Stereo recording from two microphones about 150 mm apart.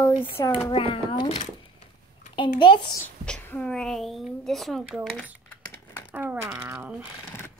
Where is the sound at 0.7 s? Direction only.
35° left (ahead or behind).